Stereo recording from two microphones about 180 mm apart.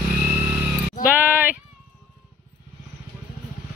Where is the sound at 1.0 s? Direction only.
50° left (ahead or behind).